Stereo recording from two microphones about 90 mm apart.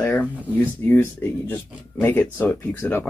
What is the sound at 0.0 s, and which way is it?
Speech, 15° left (ahead or behind).